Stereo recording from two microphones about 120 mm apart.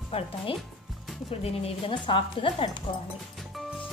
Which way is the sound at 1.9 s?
45° left (ahead or behind).